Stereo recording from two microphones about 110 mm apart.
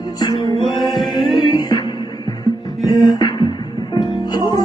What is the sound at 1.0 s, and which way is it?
Music, centre (ahead or behind).